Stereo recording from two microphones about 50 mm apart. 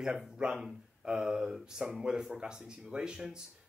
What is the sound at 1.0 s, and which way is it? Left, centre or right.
Speech, centre.